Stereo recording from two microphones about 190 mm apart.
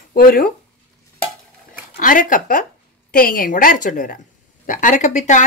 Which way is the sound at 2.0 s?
45° left (ahead or behind).